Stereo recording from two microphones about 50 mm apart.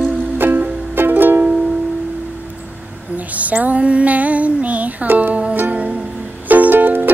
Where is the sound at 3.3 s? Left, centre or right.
Right.